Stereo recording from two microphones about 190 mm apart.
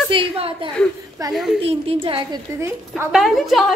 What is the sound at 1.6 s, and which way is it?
Speech, 30° right (ahead or behind).